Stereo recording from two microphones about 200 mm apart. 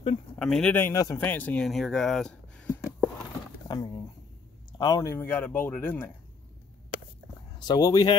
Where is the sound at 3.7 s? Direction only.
20° left (ahead or behind).